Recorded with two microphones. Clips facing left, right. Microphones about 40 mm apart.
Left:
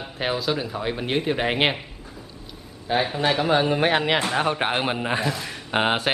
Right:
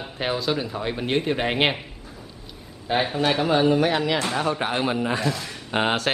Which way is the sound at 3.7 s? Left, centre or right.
Left.